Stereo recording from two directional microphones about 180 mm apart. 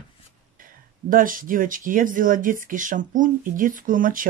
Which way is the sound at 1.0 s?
50° right (ahead or behind).